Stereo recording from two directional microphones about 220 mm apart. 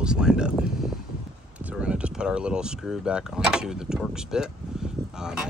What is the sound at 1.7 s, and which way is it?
Speech, 5° right (ahead or behind).